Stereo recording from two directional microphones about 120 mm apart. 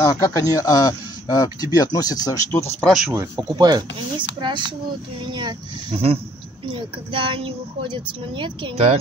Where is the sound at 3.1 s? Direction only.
30° right (ahead or behind).